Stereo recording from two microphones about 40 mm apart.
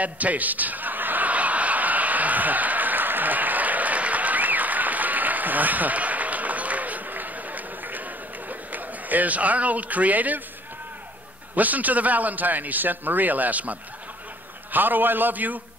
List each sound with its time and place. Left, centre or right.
0.0 s chuckle: right
11.5 s a man's voice: right
14.7 s a man's voice: right